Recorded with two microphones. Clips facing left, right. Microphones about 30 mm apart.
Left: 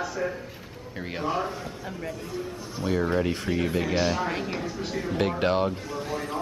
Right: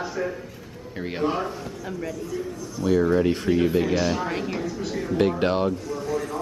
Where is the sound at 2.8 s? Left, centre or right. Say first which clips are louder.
Right 6 dB; left.